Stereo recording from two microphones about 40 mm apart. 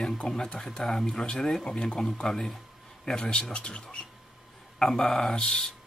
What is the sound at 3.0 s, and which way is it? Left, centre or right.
A man's voice, left.